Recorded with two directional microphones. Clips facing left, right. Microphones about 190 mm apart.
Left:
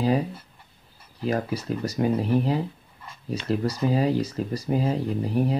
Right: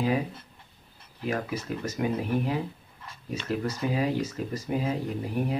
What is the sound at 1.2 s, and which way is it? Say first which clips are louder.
Speech: left 4 dB; 35° left (ahead or behind).